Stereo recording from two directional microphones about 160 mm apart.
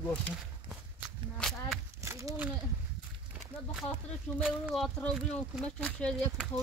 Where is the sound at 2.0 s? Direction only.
20° right (ahead or behind).